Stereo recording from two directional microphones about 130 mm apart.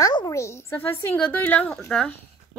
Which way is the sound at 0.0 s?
25° left (ahead or behind).